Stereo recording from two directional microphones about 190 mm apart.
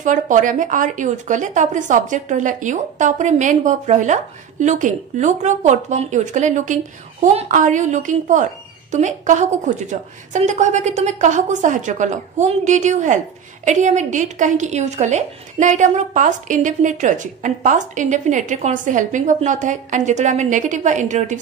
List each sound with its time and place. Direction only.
0.0 s a woman's voice: 40° right (ahead or behind)